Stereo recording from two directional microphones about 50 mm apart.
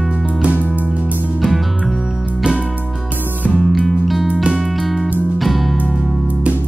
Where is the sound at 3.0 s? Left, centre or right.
Right.